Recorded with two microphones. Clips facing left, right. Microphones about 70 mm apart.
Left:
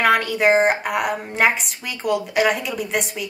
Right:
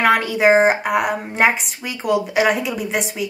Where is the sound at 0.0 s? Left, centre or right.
Centre.